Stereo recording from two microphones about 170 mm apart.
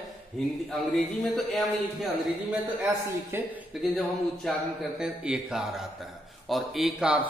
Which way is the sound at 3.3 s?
15° right (ahead or behind).